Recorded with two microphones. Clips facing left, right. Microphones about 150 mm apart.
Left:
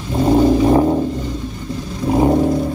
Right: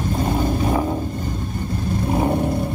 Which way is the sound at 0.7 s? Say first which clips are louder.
Left 8 dB; 30° left (ahead or behind).